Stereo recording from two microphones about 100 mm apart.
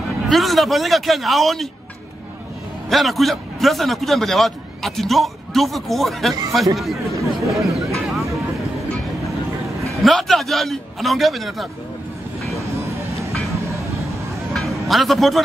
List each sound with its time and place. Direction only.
0.3 s a man's voice: centre (ahead or behind)
2.9 s a man's voice: centre (ahead or behind)
7.2 s speech: 30° right (ahead or behind)
10.0 s a man's voice: centre (ahead or behind)
14.5 s music: centre (ahead or behind)